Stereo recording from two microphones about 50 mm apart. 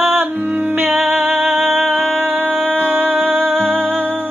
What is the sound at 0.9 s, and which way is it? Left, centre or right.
Music, centre.